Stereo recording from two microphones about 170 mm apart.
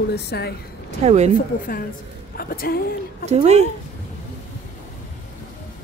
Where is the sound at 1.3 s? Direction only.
55° left (ahead or behind).